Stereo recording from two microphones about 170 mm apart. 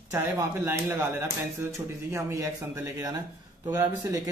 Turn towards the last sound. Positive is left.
turn(degrees=-20)  # may be behind; listen again after turning